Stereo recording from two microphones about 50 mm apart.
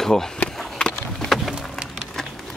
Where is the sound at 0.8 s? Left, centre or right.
Centre.